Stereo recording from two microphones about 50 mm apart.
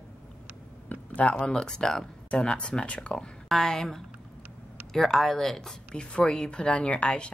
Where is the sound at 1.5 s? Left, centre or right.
Centre.